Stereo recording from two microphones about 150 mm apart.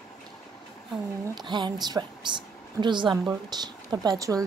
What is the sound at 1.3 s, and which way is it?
A woman's voice, 30° right (ahead or behind).